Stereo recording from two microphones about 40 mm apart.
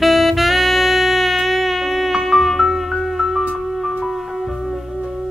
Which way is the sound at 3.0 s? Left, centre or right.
Centre.